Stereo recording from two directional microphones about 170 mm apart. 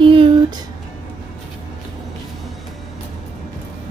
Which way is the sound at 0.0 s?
30° right (ahead or behind).